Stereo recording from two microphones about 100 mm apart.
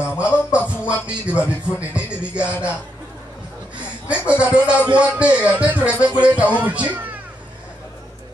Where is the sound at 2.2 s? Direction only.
10° right (ahead or behind).